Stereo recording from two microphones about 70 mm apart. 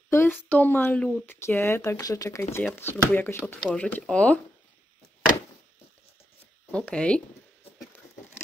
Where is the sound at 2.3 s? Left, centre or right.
Left; by 4.4 s centre.